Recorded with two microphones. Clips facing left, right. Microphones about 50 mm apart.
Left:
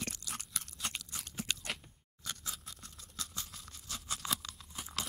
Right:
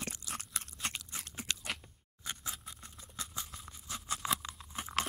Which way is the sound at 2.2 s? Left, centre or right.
Right.